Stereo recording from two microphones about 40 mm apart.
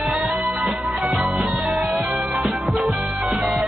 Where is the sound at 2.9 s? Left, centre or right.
Right.